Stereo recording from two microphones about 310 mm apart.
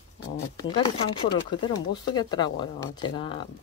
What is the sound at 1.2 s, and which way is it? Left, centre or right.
Speech, centre.